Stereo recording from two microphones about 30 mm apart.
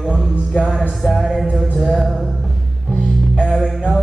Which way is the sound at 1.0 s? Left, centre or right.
Centre.